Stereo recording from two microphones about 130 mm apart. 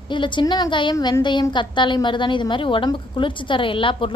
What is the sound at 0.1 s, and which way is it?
Speech, 35° left (ahead or behind).